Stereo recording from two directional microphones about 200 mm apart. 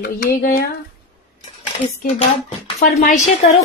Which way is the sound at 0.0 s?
45° left (ahead or behind).